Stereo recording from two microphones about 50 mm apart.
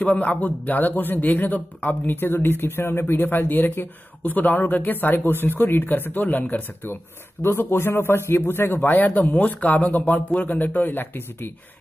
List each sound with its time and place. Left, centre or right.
0.0 s a man's voice: left
7.4 s a man's voice: left
8.9 s a man's voice: left